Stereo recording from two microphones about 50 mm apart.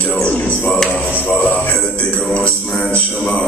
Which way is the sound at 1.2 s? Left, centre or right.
Left.